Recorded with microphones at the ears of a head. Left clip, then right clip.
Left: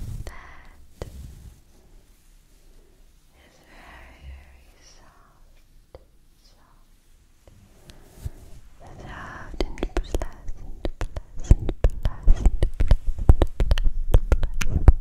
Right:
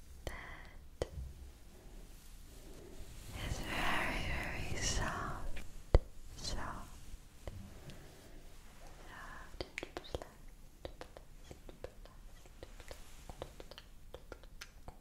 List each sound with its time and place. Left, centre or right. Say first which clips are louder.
1.1 s a sound: left 8 dB; left
3.3 s whispering: right 11 dB; right
8.1 s whispering: left 8 dB; left